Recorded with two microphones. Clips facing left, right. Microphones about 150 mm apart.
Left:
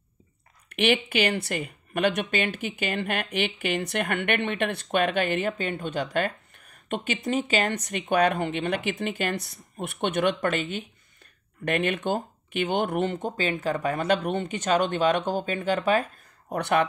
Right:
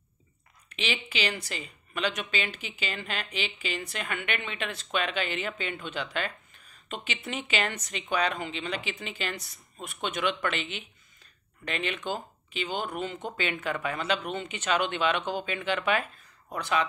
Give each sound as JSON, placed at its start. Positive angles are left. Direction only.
{"t": 0.7, "sound": "speech", "side_deg": 55}
{"t": 7.2, "sound": "speech", "side_deg": 40}
{"t": 13.2, "sound": "speech", "side_deg": 40}
{"t": 16.5, "sound": "speech", "side_deg": 60}